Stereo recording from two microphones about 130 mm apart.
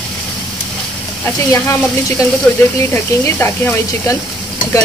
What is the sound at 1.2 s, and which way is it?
Speech, 25° left (ahead or behind).